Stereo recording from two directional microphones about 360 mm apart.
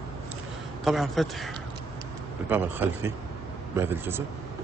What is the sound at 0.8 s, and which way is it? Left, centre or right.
Speech, centre.